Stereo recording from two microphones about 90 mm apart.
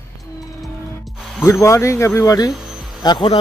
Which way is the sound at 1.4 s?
30° left (ahead or behind).